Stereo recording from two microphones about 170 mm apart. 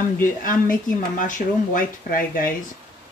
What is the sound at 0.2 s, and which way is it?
Speech, 55° left (ahead or behind).